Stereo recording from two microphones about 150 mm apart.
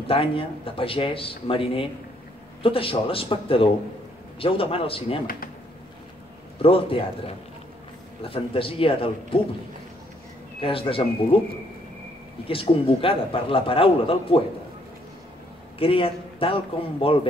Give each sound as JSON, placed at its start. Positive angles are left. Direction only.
{"t": 0.1, "sound": "a man's voice", "side_deg": 40}
{"t": 5.2, "sound": "speech", "side_deg": 75}
{"t": 6.6, "sound": "a man's voice", "side_deg": 40}
{"t": 10.6, "sound": "a man's voice", "side_deg": 40}
{"t": 15.8, "sound": "a man's voice", "side_deg": 35}